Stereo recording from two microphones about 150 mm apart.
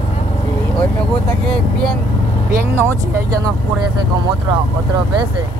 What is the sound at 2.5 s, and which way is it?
Speech, 15° right (ahead or behind).